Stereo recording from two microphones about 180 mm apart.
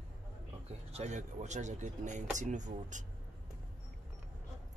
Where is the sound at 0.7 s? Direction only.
40° right (ahead or behind).